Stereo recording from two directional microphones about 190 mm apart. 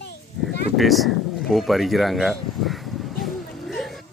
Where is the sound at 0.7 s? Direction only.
Centre (ahead or behind).